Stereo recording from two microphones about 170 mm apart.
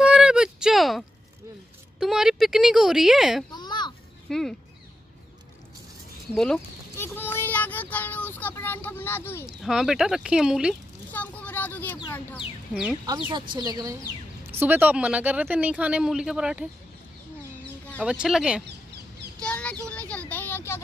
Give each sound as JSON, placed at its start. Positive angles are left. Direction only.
{"t": 0.0, "sound": "a sound", "side_deg": -5}
{"t": 2.0, "sound": "a woman's voice", "side_deg": 0}
{"t": 3.5, "sound": "children playing", "side_deg": 25}
{"t": 4.3, "sound": "a woman's voice", "side_deg": 5}
{"t": 6.3, "sound": "a woman's voice", "side_deg": 5}
{"t": 7.0, "sound": "child singing", "side_deg": 15}
{"t": 9.6, "sound": "a woman's voice", "side_deg": 0}
{"t": 11.1, "sound": "a sound", "side_deg": 10}
{"t": 13.6, "sound": "speech", "side_deg": -20}
{"t": 18.0, "sound": "a woman's voice", "side_deg": -5}
{"t": 19.4, "sound": "a sound", "side_deg": 5}